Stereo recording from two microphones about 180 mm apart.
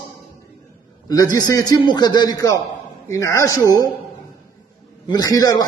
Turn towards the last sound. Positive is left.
turn(degrees=20)  # may be behind; listen again after turning